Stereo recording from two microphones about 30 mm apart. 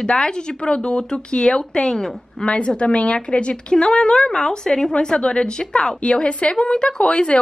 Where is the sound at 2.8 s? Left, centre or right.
Left.